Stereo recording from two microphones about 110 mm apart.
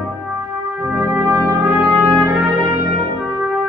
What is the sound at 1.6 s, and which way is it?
Trumpet, 10° right (ahead or behind).